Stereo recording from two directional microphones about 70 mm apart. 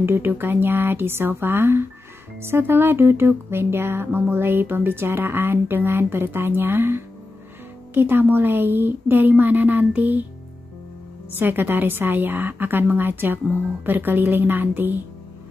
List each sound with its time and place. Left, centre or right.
0.0 s a woman's voice: right
11.3 s a woman's voice: right